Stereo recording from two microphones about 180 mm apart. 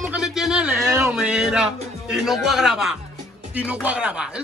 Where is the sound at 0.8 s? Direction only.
15° right (ahead or behind).